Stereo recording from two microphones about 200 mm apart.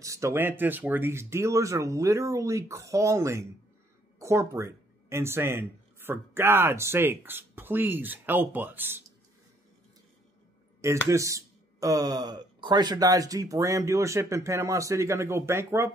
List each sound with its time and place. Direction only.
0.0 s speech: 15° right (ahead or behind)
10.8 s speech: 15° right (ahead or behind)